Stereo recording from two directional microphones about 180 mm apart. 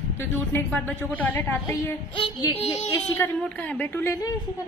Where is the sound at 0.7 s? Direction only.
10° left (ahead or behind).